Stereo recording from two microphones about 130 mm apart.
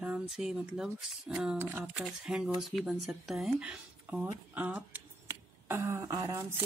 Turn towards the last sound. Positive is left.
turn(degrees=-25)  # may be behind; listen again after turning